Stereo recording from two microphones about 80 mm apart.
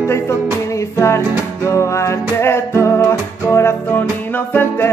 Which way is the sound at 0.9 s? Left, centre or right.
Left.